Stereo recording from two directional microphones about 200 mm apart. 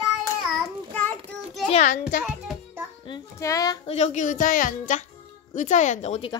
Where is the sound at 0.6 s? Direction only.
5° left (ahead or behind).